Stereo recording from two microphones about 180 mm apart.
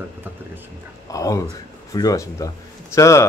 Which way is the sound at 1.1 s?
20° left (ahead or behind).